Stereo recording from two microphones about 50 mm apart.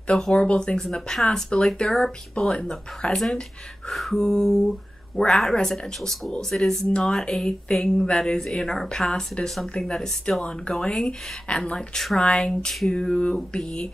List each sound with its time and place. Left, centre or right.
0.0 s speech: centre
3.9 s speech: centre